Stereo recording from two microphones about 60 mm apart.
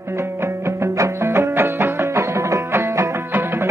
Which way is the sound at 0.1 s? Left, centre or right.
Right.